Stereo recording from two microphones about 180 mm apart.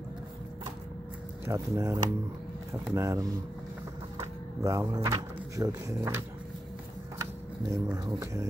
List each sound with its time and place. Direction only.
1.4 s speech: 15° right (ahead or behind)
7.7 s speech: 20° right (ahead or behind)